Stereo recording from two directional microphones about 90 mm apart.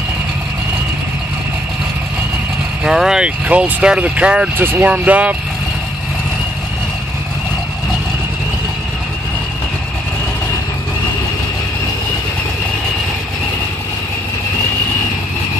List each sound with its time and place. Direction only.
2.8 s speech: 5° right (ahead or behind)